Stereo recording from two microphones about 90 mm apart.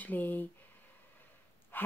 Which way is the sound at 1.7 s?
20° left (ahead or behind).